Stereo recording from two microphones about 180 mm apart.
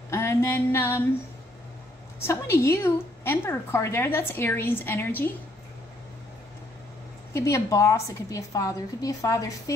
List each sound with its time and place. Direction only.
0.1 s a sound: 15° left (ahead or behind)
2.2 s a woman's voice: 15° left (ahead or behind)
7.3 s a woman's voice: 15° left (ahead or behind)